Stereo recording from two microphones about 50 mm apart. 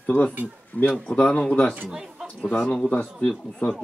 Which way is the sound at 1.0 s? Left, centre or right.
Left.